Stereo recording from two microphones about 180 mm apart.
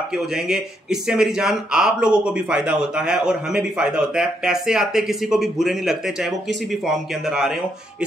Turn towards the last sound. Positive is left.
turn(degrees=0)  # may be behind; listen again after turning